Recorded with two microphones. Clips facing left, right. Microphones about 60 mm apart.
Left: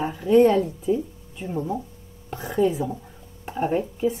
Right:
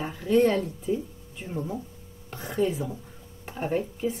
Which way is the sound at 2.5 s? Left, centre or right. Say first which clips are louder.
Left 5 dB; centre.